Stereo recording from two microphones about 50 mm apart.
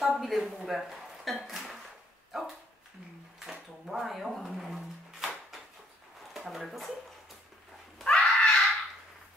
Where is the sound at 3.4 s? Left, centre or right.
Centre.